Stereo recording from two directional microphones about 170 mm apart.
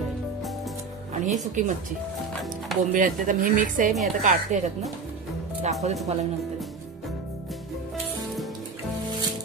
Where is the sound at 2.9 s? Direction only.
50° right (ahead or behind).